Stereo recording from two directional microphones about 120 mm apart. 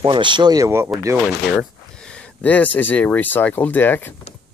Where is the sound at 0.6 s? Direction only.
20° right (ahead or behind).